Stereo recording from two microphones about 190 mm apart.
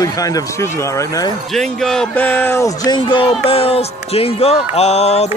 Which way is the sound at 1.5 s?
Centre (ahead or behind).